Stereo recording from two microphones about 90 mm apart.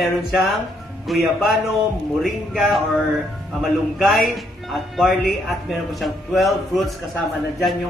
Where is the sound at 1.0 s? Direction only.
Centre (ahead or behind).